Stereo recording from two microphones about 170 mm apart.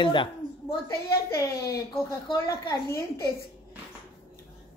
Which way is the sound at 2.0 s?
20° left (ahead or behind).